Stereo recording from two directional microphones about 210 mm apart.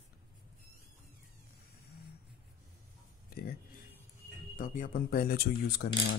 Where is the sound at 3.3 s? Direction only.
45° left (ahead or behind).